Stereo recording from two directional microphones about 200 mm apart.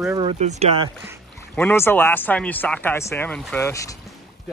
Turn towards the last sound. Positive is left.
turn(degrees=15)  # may be behind; listen again after turning